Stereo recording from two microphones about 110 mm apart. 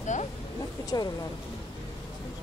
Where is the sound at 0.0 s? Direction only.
90° left.